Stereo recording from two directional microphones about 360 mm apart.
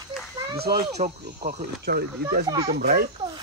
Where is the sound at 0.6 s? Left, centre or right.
Right.